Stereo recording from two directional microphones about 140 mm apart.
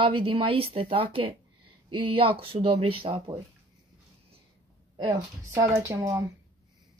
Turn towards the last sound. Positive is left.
turn(degrees=-25)  # may be behind; listen again after turning